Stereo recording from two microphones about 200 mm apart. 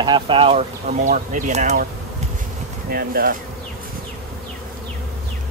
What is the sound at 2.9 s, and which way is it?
Speech, 45° right (ahead or behind).